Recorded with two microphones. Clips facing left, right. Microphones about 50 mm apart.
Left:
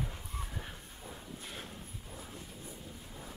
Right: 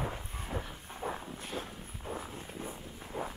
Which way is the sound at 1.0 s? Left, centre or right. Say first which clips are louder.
Right 13 dB; right.